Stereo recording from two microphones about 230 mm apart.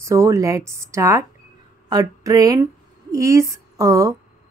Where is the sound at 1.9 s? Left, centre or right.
Centre.